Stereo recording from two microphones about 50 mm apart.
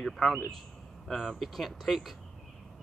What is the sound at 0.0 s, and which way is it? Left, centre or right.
Speech, centre.